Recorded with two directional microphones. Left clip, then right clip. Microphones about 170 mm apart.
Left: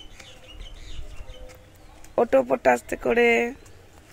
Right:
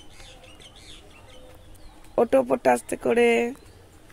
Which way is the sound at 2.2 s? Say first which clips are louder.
Even; 20° right (ahead or behind).